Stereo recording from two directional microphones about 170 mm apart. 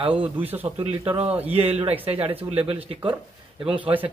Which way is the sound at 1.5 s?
35° right (ahead or behind).